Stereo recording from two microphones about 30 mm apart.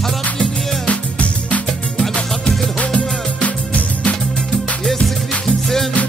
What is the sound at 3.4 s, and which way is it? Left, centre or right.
Music, left.